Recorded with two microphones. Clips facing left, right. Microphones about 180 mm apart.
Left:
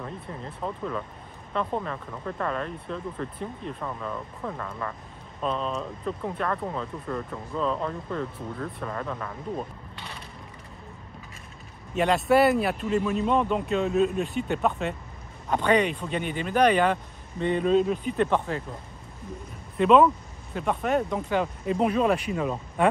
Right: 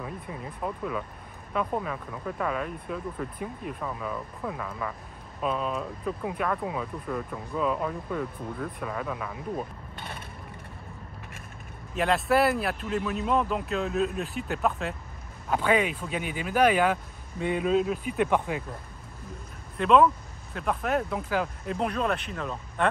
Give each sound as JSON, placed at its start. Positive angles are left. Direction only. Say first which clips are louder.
{"t": 0.0, "sound": "speech", "louder": "even", "side_deg": -10}
{"t": 9.9, "sound": "mechanisms", "louder": "right 2 dB", "side_deg": -50}
{"t": 11.9, "sound": "speech", "louder": "left 3 dB", "side_deg": 0}
{"t": 19.8, "sound": "speech", "louder": "left 2 dB", "side_deg": 0}